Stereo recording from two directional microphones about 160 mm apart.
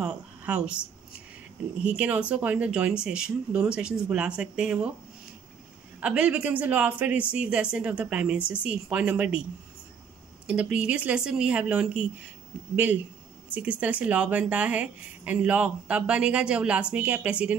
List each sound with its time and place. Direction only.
0.0 s a sound: 10° right (ahead or behind)
1.8 s speech: 10° right (ahead or behind)
5.9 s speech: 10° right (ahead or behind)